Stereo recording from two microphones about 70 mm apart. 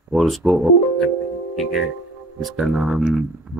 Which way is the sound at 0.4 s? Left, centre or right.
Right.